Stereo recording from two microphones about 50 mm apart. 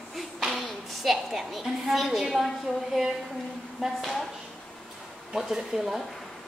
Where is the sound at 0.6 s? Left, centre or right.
Centre.